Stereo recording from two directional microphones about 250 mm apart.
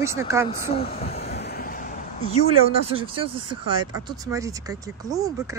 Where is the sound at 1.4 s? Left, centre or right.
Left.